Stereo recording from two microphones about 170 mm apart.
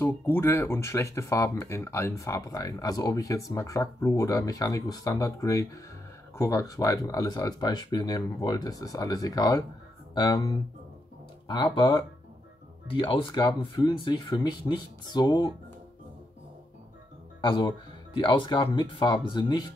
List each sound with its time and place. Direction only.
0.0 s speech: 15° left (ahead or behind)
17.4 s speech: 25° left (ahead or behind)